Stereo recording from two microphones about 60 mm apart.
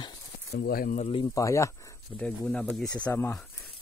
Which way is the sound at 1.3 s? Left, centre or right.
Left.